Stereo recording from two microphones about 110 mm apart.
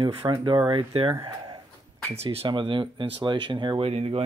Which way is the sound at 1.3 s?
40° right (ahead or behind).